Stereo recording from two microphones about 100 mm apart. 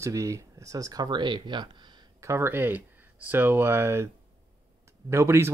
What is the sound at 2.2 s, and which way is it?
Speech, 25° right (ahead or behind).